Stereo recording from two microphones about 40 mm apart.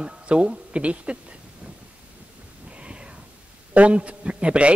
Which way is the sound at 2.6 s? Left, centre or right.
Right.